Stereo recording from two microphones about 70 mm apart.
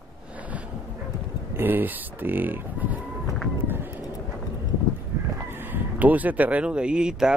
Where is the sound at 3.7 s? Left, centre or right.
Right.